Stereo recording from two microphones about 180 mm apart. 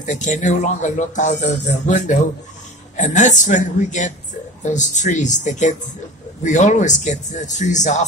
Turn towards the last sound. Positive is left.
turn(degrees=40)  # may be behind; listen again after turning